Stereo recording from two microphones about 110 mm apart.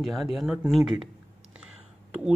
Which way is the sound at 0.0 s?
Centre (ahead or behind).